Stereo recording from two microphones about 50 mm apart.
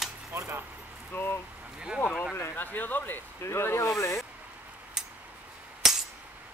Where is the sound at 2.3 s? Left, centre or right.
Left.